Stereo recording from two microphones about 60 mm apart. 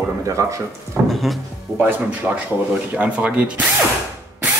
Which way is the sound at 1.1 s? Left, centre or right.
Centre.